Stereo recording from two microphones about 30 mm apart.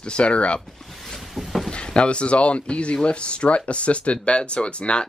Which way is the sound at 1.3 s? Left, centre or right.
Centre.